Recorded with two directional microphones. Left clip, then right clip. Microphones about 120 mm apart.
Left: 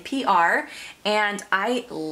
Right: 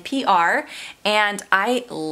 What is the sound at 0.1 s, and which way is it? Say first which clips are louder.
Speech: right 2 dB; 25° right (ahead or behind).